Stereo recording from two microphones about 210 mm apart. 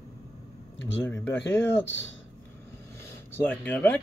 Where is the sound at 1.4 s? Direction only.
60° left (ahead or behind).